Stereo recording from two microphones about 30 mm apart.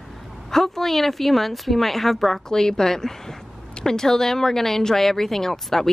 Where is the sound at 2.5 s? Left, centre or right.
Centre.